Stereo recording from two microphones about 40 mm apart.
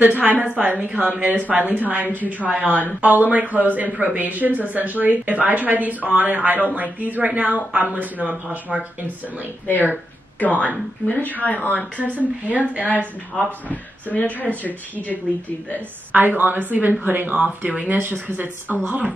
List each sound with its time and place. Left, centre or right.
0.0 s speech: right
10.4 s speech: left
12.0 s speech: right
13.4 s speech: left
16.1 s speech: right